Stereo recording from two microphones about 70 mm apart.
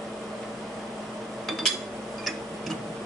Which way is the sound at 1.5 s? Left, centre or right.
Centre.